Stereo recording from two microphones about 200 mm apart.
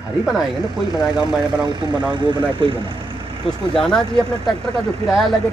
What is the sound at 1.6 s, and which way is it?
Speech, 20° right (ahead or behind).